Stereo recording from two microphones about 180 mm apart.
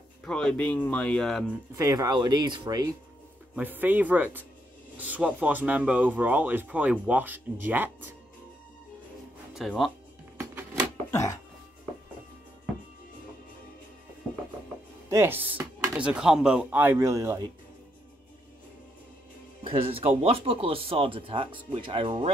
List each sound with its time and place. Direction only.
0.2 s speech: 5° left (ahead or behind)
1.8 s speech: 20° right (ahead or behind)
3.5 s speech: 10° right (ahead or behind)
9.5 s speech: centre (ahead or behind)
10.3 s music: 15° right (ahead or behind)
11.1 s a sound: 15° left (ahead or behind)
15.0 s speech: 15° right (ahead or behind)
19.6 s speech: 30° right (ahead or behind)